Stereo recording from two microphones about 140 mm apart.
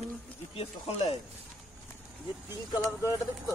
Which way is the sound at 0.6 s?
45° left (ahead or behind).